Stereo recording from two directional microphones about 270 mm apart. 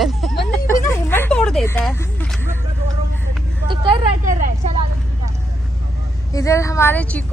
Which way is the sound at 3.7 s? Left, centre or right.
Centre.